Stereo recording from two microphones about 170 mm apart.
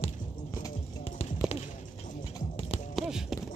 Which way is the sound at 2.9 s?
5° right (ahead or behind).